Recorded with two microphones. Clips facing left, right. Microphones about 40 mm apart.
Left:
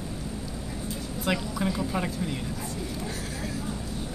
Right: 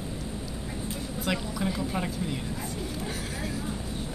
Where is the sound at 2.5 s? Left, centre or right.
Centre.